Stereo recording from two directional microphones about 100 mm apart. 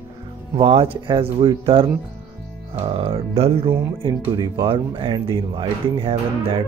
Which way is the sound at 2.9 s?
65° right (ahead or behind).